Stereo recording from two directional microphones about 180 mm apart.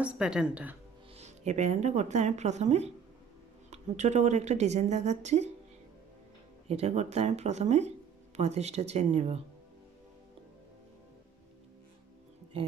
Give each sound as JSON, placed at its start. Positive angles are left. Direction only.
{"t": 0.0, "sound": "a woman's voice", "side_deg": -5}
{"t": 1.1, "sound": "speech", "side_deg": -40}
{"t": 6.7, "sound": "speech", "side_deg": -35}